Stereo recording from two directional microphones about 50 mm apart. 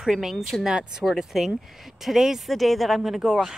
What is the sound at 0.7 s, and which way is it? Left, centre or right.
Speech, centre.